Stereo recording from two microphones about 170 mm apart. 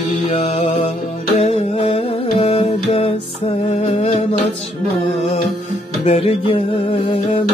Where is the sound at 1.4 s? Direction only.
35° left (ahead or behind).